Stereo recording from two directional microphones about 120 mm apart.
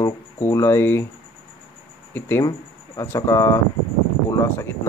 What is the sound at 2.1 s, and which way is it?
Speech, 20° left (ahead or behind).